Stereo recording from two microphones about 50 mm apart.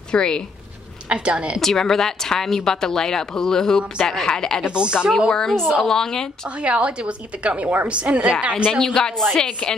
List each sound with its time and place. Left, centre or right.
0.1 s speech: centre
1.0 s a woman's voice: right
1.6 s a woman's voice: centre
4.6 s a woman's voice: centre
5.3 s a woman's voice: centre
6.6 s a woman's voice: right
8.8 s a woman's voice: centre